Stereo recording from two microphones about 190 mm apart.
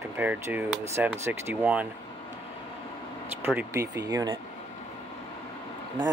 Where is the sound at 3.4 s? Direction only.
10° right (ahead or behind).